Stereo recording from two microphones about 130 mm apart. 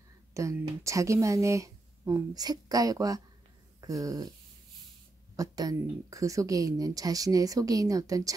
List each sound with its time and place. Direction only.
0.3 s speech: 25° right (ahead or behind)
5.3 s speech: 25° right (ahead or behind)